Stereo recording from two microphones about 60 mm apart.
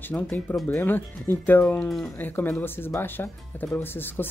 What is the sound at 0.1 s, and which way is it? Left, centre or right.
A woman's voice, left.